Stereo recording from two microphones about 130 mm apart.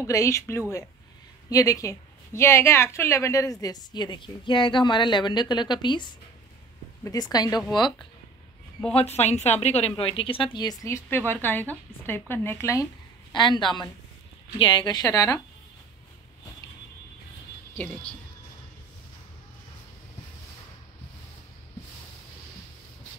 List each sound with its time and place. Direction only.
0.0 s a woman's voice: 25° left (ahead or behind)
8.9 s a woman's voice: 55° left (ahead or behind); by 12.8 s 20° left (ahead or behind)
13.3 s a woman's voice: 35° left (ahead or behind)